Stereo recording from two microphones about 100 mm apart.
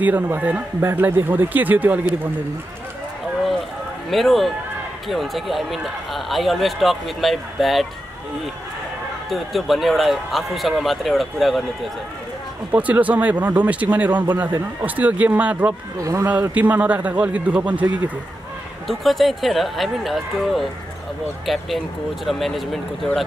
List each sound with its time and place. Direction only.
0.0 s speech: 15° right (ahead or behind)
4.1 s speech: centre (ahead or behind)
9.3 s speech: centre (ahead or behind)
12.7 s speech: 15° right (ahead or behind)
16.0 s speech: 35° right (ahead or behind)
16.3 s speech: 15° right (ahead or behind)
18.9 s speech: centre (ahead or behind)